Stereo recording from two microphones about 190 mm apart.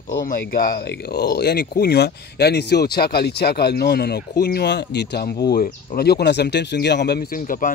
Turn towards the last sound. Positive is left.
turn(degrees=45)  # may be behind; listen again after turning